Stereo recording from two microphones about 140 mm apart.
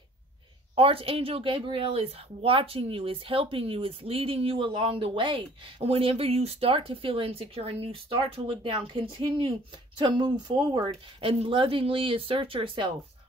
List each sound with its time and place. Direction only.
0.7 s speech: 40° right (ahead or behind)
11.1 s speech: 40° right (ahead or behind)